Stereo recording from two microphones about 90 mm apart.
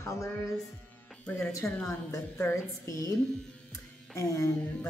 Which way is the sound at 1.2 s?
15° left (ahead or behind).